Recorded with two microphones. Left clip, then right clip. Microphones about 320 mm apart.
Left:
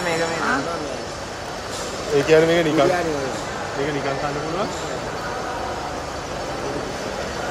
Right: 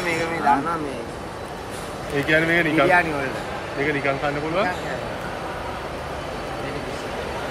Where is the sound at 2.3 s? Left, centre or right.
Centre.